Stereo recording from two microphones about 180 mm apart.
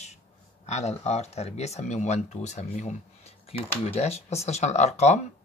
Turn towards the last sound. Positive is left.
turn(degrees=40)  # may be behind; listen again after turning